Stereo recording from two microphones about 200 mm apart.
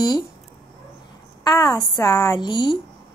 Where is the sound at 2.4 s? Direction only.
25° left (ahead or behind).